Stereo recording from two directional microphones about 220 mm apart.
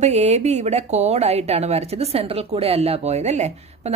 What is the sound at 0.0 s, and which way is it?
Speech, 30° right (ahead or behind).